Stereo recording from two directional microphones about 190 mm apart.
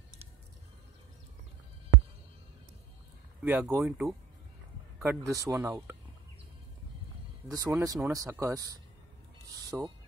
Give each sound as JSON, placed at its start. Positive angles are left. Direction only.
{"t": 3.4, "sound": "speech", "side_deg": -10}
{"t": 5.0, "sound": "speech", "side_deg": -15}
{"t": 7.4, "sound": "speech", "side_deg": -20}